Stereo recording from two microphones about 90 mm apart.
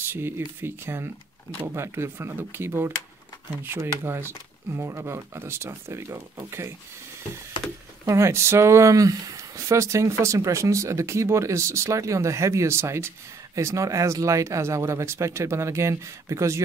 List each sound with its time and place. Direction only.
0.0 s speech: 25° right (ahead or behind)
8.0 s speech: 35° right (ahead or behind)